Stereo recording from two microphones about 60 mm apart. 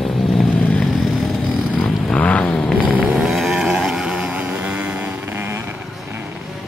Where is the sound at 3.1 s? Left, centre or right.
Centre.